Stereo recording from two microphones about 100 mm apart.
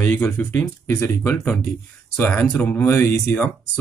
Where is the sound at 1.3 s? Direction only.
5° left (ahead or behind); by 3.1 s 25° left (ahead or behind).